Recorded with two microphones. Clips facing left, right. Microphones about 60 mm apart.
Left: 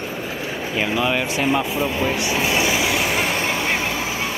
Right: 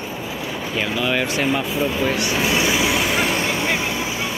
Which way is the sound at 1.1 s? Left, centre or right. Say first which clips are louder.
Even; centre.